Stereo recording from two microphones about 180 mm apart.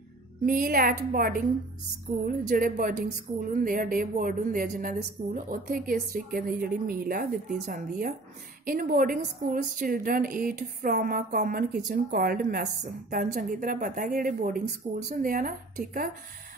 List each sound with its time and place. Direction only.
0.5 s a woman's voice: 55° right (ahead or behind)